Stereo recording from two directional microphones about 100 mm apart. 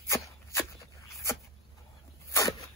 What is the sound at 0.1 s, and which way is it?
Dog, 30° left (ahead or behind).